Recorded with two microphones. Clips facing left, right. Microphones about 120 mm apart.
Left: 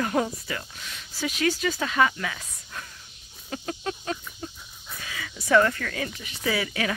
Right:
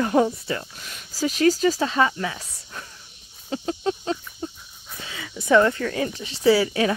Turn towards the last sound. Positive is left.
turn(degrees=-30)  # may be behind; listen again after turning